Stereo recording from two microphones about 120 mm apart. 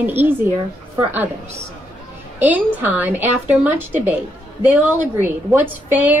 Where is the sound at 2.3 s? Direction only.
15° right (ahead or behind).